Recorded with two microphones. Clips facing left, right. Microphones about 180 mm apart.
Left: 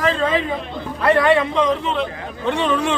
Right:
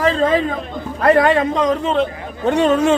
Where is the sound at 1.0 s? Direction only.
40° right (ahead or behind).